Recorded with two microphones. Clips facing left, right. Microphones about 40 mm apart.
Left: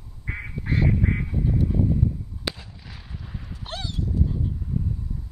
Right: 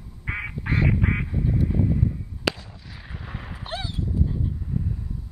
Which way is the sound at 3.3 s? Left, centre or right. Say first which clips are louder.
Right 4 dB; right.